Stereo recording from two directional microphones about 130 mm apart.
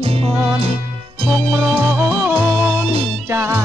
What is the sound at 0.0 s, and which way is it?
Music, 45° right (ahead or behind).